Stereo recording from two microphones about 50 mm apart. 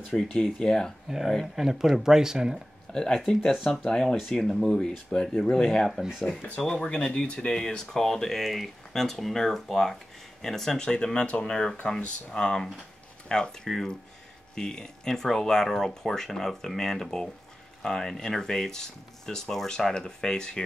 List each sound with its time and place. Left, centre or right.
0.3 s speech: centre
1.0 s speech: centre
2.9 s speech: centre
6.8 s speech: centre
13.7 s speech: centre